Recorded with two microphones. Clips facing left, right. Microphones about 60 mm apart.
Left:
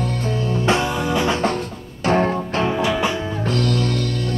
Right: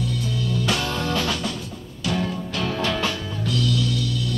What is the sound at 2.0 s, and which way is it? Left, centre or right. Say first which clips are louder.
Music: left 8 dB; left.